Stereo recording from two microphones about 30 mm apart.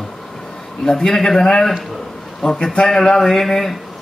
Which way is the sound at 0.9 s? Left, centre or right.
Centre.